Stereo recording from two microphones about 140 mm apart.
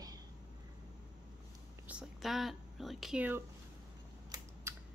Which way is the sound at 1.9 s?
5° right (ahead or behind).